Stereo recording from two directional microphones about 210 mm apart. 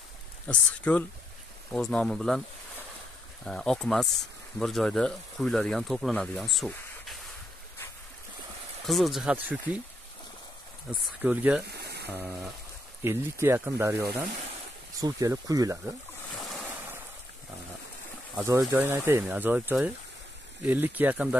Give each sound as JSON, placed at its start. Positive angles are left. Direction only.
{"t": 0.5, "sound": "speech", "side_deg": 5}
{"t": 3.4, "sound": "speech", "side_deg": 5}
{"t": 8.8, "sound": "speech", "side_deg": 0}
{"t": 10.9, "sound": "speech", "side_deg": -5}
{"t": 11.6, "sound": "a sound", "side_deg": -50}
{"t": 12.1, "sound": "speech", "side_deg": -10}
{"t": 16.4, "sound": "boat", "side_deg": 0}
{"t": 18.3, "sound": "speech", "side_deg": -10}